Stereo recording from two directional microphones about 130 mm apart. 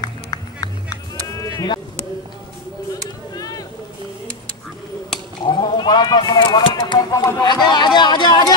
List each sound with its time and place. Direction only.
0.0 s music: 30° left (ahead or behind)
1.4 s sheep: 30° left (ahead or behind)
3.3 s boat: 30° left (ahead or behind)
5.4 s a sound: 35° left (ahead or behind)
7.4 s chatter: 35° left (ahead or behind)